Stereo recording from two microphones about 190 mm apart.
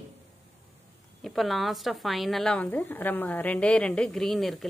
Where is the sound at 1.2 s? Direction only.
Centre (ahead or behind).